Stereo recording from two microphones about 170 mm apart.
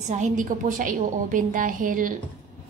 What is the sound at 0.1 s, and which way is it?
A woman's voice, 50° right (ahead or behind).